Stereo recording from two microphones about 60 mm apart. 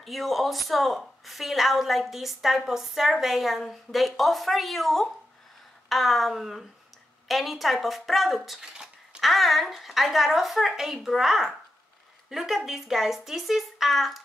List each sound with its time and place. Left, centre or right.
0.0 s a woman's voice: centre
8.7 s a sound: centre
9.2 s a woman's voice: centre